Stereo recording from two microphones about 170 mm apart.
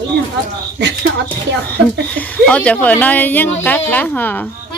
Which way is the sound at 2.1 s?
5° left (ahead or behind).